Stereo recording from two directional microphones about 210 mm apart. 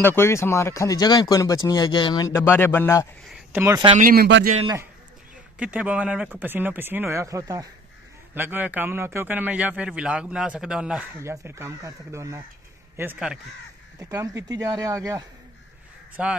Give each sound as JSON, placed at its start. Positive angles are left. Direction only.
{"t": 0.0, "sound": "speech", "side_deg": 10}
{"t": 3.3, "sound": "speech", "side_deg": -10}
{"t": 4.0, "sound": "a man's voice", "side_deg": -45}
{"t": 5.6, "sound": "a man's voice", "side_deg": -5}